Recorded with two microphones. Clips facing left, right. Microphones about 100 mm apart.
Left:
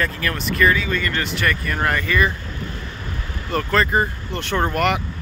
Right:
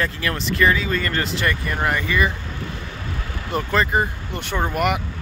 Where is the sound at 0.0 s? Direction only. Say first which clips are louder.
Even; 25° right (ahead or behind).